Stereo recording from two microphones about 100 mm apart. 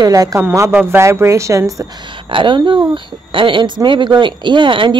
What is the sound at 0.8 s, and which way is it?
Speech, 25° right (ahead or behind).